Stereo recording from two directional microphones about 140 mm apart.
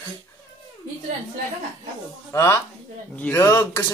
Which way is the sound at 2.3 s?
20° left (ahead or behind).